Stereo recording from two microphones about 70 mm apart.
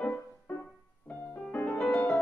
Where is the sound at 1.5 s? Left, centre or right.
Left.